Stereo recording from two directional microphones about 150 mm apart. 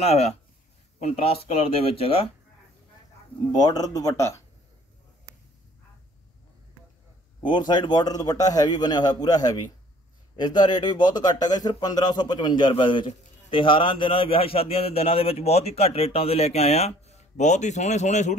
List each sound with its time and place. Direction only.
0.0 s speech: 45° left (ahead or behind)
3.5 s a man's voice: 25° left (ahead or behind)
7.4 s a man's voice: 30° left (ahead or behind); by 18.3 s 50° left (ahead or behind)